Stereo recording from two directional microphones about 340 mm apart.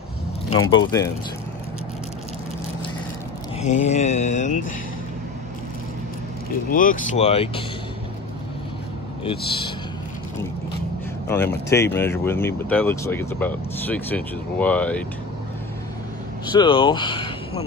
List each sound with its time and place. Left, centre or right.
0.5 s speech: left
3.6 s mantra: centre
6.7 s mantra: left
9.2 s speech: centre
11.2 s speech: centre
16.5 s speech: centre